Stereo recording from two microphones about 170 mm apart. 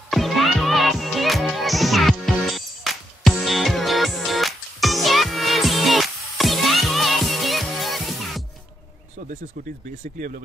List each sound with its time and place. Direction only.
0.1 s music: centre (ahead or behind)
10.1 s speech: 55° right (ahead or behind)